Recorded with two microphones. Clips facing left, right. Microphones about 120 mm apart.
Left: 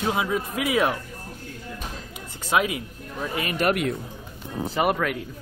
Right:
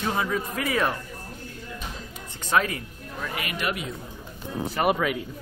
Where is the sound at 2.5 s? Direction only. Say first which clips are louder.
Left 1 dB; 10° left (ahead or behind).